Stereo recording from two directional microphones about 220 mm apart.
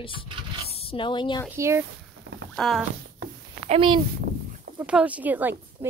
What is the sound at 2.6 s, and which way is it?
Speech, centre (ahead or behind).